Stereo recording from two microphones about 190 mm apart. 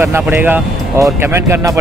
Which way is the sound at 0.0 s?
10° right (ahead or behind).